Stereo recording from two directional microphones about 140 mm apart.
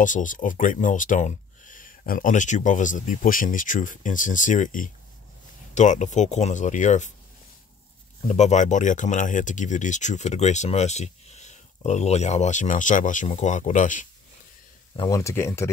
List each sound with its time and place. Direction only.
0.0 s speech: 65° left (ahead or behind)
8.3 s speech: 55° left (ahead or behind)
15.0 s speech: 25° left (ahead or behind)